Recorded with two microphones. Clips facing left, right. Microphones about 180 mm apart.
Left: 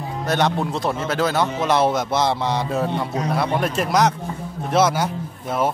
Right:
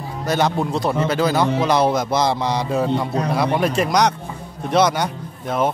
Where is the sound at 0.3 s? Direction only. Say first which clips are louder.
Right 2 dB; centre (ahead or behind).